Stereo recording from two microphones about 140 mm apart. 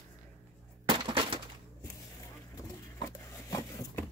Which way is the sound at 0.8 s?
35° right (ahead or behind).